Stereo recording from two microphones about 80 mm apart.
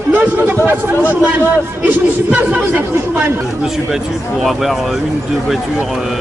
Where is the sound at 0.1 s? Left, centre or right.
Right.